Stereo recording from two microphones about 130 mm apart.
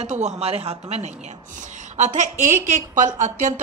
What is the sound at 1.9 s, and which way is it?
A woman's voice, 65° right (ahead or behind).